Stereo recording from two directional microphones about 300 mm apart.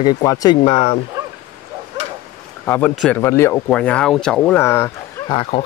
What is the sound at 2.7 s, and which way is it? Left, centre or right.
Speech, centre.